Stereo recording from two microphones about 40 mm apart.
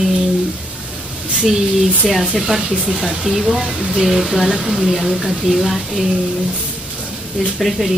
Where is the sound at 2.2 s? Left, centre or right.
Centre.